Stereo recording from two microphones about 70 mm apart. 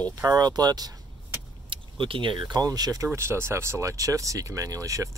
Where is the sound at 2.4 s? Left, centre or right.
Right.